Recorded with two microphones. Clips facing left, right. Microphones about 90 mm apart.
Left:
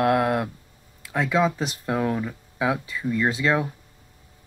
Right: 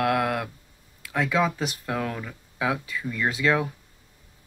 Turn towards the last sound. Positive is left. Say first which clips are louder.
# left 1 dB
turn(degrees=30)  # may be behind; listen again after turning